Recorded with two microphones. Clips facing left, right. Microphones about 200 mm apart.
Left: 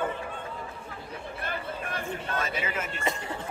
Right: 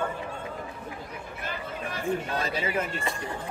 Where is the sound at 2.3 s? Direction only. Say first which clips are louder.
Right 3 dB; 35° right (ahead or behind).